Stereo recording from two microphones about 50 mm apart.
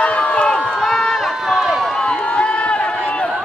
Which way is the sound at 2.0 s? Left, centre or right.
Left.